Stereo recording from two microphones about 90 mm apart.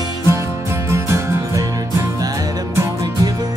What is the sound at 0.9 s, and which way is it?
Music, 30° right (ahead or behind).